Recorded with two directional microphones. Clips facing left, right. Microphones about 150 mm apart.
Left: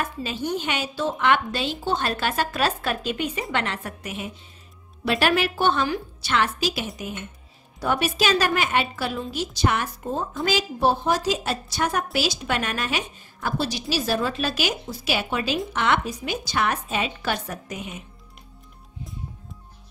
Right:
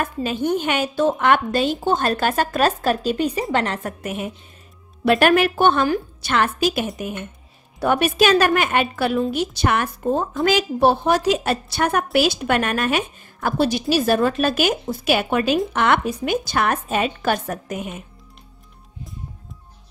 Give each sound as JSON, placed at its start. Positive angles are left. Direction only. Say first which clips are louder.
{"t": 0.0, "sound": "a woman's voice", "louder": "right 6 dB", "side_deg": -50}